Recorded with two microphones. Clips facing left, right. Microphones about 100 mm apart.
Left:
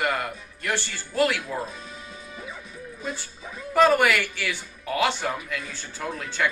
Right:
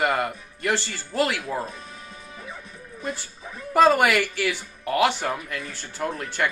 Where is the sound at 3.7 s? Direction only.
15° right (ahead or behind).